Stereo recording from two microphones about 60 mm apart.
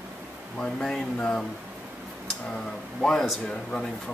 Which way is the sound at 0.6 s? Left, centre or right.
Centre.